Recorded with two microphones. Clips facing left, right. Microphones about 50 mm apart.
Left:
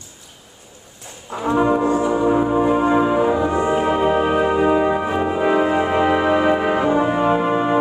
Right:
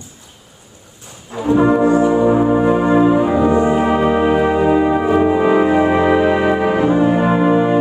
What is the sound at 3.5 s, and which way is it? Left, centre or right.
Music, centre.